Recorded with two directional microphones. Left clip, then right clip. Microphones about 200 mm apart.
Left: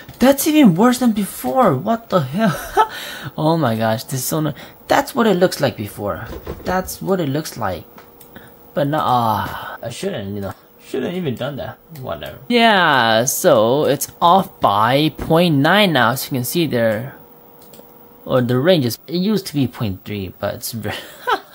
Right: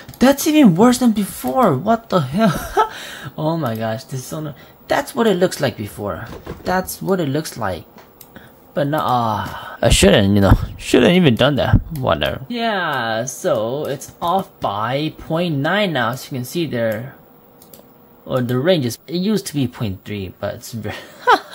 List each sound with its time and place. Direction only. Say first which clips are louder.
0.2 s speech: even; centre (ahead or behind); by 4.4 s 20° left (ahead or behind)
4.4 s a woman's voice: left 9 dB; 35° left (ahead or behind)
4.8 s speech: left 2 dB; 20° left (ahead or behind)
9.8 s speech: right 18 dB; 45° right (ahead or behind)
12.4 s speech: left 12 dB; 30° left (ahead or behind); by 17.1 s 15° left (ahead or behind)
18.2 s speech: left 3 dB; 15° left (ahead or behind)
21.2 s a sound: right 7 dB; 25° right (ahead or behind)